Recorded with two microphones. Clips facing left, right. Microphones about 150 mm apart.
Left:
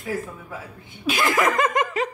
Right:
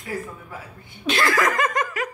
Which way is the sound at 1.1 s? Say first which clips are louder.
Even; 15° left (ahead or behind).